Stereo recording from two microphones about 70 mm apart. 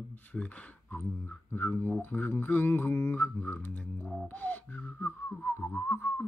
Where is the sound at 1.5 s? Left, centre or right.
Left.